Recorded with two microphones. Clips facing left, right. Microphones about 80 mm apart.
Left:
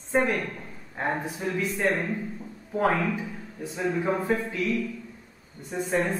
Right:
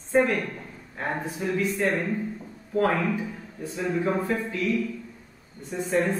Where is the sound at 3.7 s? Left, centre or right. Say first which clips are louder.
Right 1 dB; centre.